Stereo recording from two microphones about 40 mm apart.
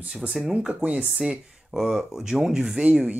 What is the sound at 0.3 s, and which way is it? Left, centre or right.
Speech, centre.